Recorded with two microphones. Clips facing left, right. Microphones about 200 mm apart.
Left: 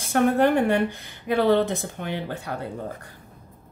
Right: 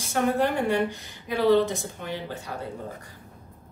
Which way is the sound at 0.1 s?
60° left (ahead or behind).